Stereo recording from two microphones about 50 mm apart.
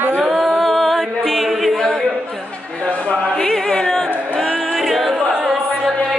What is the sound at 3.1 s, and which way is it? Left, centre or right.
Music, centre.